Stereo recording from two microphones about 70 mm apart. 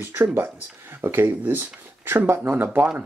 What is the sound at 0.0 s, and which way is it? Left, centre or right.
Speech, right.